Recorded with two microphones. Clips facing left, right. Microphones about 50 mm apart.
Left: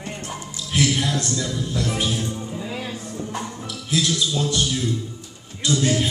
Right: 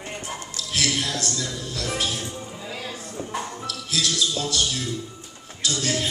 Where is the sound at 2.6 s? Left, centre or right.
Centre.